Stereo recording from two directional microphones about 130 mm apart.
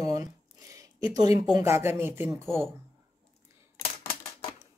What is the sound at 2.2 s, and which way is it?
Speech, 5° left (ahead or behind).